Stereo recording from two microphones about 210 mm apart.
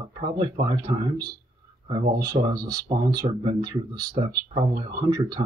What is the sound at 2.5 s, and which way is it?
Speech, 20° right (ahead or behind).